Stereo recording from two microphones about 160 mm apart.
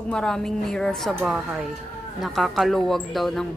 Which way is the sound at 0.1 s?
5° left (ahead or behind).